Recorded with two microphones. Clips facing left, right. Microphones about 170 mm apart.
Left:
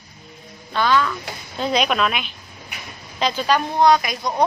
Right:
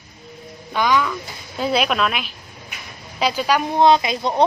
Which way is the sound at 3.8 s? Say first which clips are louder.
Right 2 dB; 25° right (ahead or behind).